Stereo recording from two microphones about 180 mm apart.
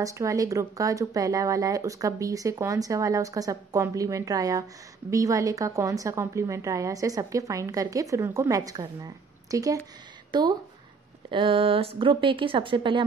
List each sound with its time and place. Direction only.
0.0 s a woman's voice: 15° right (ahead or behind)